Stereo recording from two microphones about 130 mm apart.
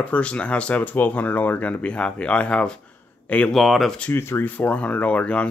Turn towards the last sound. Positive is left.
turn(degrees=10)  # may be behind; listen again after turning